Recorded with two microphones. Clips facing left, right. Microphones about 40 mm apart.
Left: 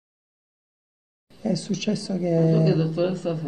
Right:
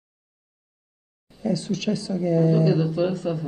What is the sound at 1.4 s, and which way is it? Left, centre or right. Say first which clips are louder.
Speech: right 1 dB; right.